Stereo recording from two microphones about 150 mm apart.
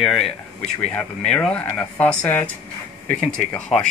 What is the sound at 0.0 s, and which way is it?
Speech, centre (ahead or behind).